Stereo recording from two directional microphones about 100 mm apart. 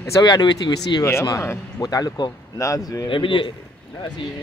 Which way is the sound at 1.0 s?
30° left (ahead or behind).